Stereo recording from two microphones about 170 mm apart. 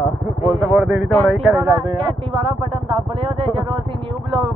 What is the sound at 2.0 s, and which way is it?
Speech, 30° right (ahead or behind).